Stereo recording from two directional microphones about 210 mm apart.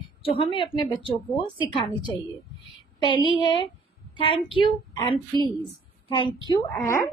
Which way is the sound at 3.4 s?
25° left (ahead or behind).